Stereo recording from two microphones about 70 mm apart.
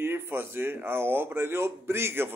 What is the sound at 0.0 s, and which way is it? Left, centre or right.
A man's voice, right.